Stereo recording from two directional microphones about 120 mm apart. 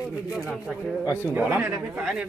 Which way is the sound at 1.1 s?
20° left (ahead or behind).